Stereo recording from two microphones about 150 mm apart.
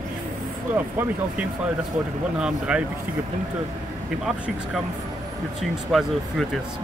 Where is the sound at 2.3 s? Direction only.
5° right (ahead or behind).